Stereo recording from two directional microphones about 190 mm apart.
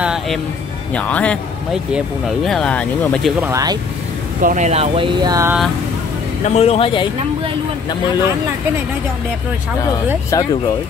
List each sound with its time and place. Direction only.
0.0 s a sound: 5° right (ahead or behind)
0.9 s a man's voice: 5° left (ahead or behind)
3.3 s speech: 15° right (ahead or behind)
4.4 s speech: 40° right (ahead or behind); by 5.6 s 15° right (ahead or behind)
6.4 s speech: 35° left (ahead or behind)
10.3 s a man's voice: 20° left (ahead or behind)